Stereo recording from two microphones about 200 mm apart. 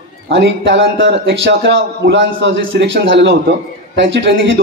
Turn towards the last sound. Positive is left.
turn(degrees=-60)  # may be behind; listen again after turning